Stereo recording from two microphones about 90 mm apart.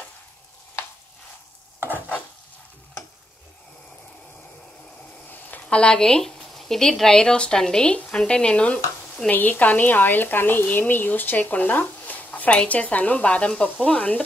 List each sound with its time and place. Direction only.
5.3 s speech: 20° left (ahead or behind)